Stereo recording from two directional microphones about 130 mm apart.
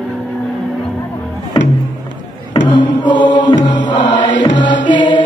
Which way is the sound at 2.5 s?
35° left (ahead or behind).